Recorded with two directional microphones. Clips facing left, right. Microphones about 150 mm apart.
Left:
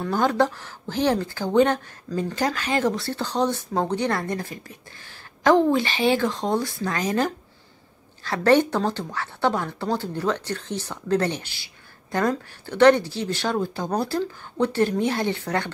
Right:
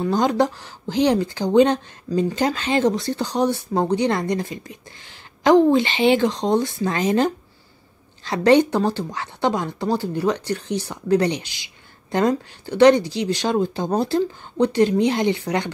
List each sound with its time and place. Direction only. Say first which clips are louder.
0.0 s speech: right 2 dB; 15° right (ahead or behind)